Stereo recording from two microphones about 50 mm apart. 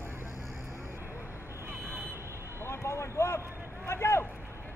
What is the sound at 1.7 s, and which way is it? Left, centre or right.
Vehicle, right.